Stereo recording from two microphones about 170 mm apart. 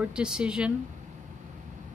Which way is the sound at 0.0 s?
5° right (ahead or behind).